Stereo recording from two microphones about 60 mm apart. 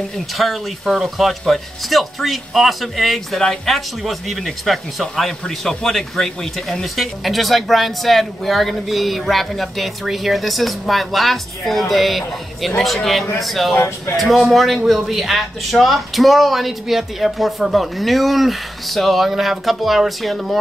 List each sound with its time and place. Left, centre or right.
0.4 s speech: centre
13.7 s speech: left
14.1 s speech: centre